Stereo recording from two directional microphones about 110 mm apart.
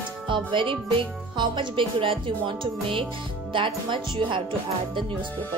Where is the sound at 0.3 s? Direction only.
50° right (ahead or behind).